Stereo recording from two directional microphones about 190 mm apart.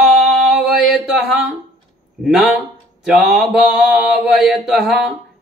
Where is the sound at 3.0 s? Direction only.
Centre (ahead or behind).